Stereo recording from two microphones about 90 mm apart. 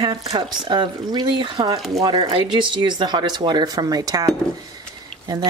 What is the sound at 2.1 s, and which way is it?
Speech, 80° right.